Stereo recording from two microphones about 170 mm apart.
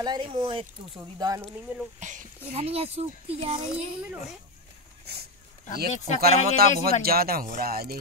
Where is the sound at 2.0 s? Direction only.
45° right (ahead or behind).